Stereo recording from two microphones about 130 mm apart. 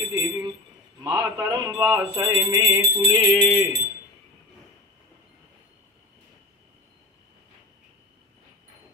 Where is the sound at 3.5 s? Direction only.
30° right (ahead or behind).